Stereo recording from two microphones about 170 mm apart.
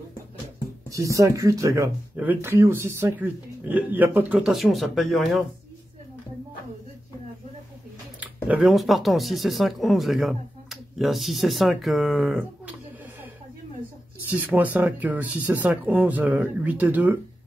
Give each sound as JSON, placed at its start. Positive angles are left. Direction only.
{"t": 0.8, "sound": "speech", "side_deg": -20}
{"t": 8.2, "sound": "speech", "side_deg": -5}
{"t": 14.3, "sound": "speech", "side_deg": -10}